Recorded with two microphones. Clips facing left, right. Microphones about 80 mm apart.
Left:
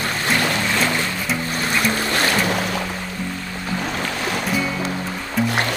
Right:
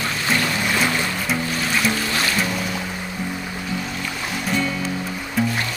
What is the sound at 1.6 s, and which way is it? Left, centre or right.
Music, left.